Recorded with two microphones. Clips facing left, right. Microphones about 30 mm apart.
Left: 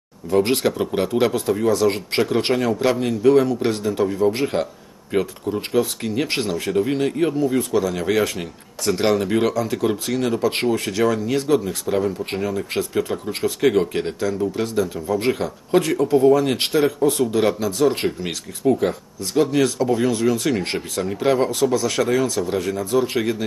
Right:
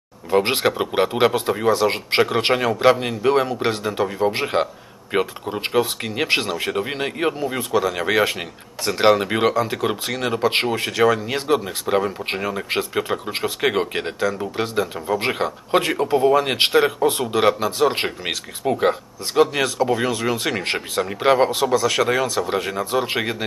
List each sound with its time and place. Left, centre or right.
0.3 s speech: right
6.2 s speech: centre
6.6 s speech: right
14.0 s speech: centre
14.4 s speech: right
19.4 s speech: centre
20.2 s speech: right
20.5 s speech: centre
21.1 s speech: right
21.7 s speech: centre
22.5 s speech: right